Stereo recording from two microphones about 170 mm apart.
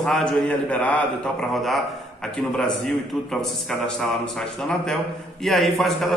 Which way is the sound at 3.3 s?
5° left (ahead or behind).